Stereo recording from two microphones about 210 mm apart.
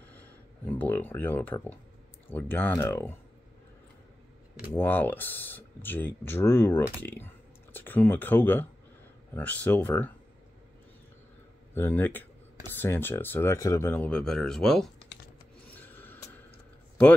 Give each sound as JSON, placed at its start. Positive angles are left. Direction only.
{"t": 0.1, "sound": "speech", "side_deg": 10}
{"t": 4.7, "sound": "speech", "side_deg": 10}
{"t": 11.7, "sound": "speech", "side_deg": 10}
{"t": 15.6, "sound": "filing", "side_deg": 10}